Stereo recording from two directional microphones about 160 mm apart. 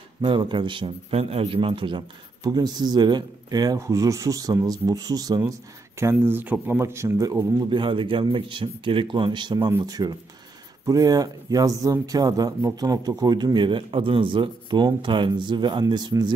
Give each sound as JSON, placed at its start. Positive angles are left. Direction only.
{"t": 0.2, "sound": "speech", "side_deg": -30}